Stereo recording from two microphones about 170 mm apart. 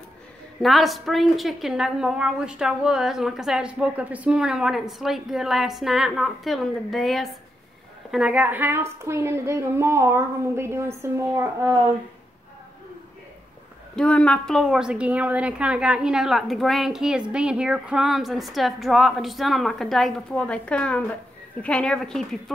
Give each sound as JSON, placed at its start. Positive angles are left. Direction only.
{"t": 0.6, "sound": "a woman's voice", "side_deg": 0}
{"t": 13.9, "sound": "a woman's voice", "side_deg": 5}